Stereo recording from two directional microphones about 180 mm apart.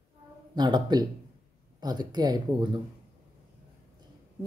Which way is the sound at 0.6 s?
25° right (ahead or behind).